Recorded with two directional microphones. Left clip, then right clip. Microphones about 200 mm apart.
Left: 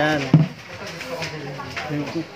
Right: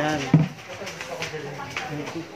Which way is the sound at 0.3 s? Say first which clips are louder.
Left 3 dB; centre (ahead or behind).